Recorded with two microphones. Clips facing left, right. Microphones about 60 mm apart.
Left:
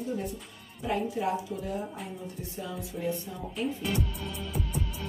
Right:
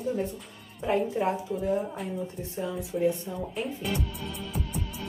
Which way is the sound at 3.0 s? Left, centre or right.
Centre.